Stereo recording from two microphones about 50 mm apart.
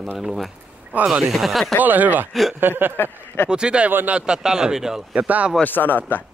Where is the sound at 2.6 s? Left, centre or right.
Right.